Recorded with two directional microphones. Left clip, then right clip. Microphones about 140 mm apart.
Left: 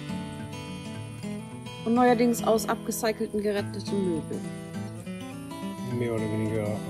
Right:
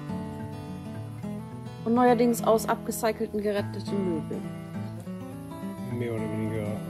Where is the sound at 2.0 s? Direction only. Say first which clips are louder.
Even; 20° right (ahead or behind).